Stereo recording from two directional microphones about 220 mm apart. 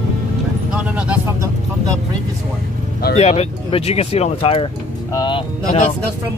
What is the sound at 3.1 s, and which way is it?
Speech, 30° left (ahead or behind).